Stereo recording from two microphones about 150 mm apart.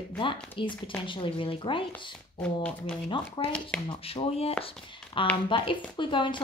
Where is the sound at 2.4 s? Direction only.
5° left (ahead or behind).